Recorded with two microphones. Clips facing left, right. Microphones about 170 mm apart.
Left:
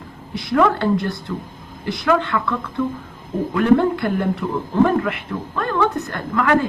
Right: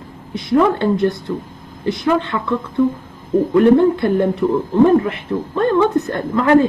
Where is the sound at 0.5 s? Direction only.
20° right (ahead or behind).